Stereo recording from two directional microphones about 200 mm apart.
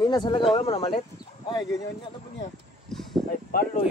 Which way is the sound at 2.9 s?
Centre (ahead or behind).